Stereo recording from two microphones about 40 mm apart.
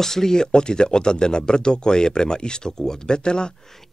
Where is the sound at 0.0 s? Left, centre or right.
Centre.